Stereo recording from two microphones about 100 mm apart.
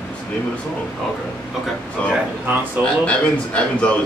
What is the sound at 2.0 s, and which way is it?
A man's voice, 15° left (ahead or behind).